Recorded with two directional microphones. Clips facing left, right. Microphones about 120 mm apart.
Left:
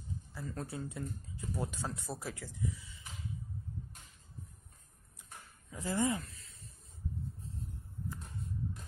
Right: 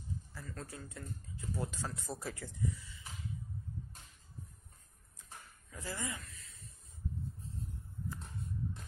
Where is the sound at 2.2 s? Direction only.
Centre (ahead or behind).